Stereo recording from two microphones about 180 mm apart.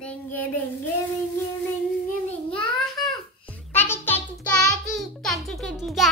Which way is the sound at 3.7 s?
10° left (ahead or behind).